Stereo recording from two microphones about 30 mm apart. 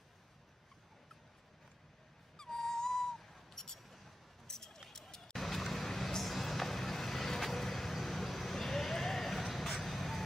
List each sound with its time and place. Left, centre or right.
2.3 s owl: centre
4.5 s a sound: centre
4.9 s vehicle: centre